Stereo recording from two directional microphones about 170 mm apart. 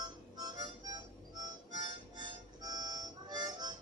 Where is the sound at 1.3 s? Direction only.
25° right (ahead or behind).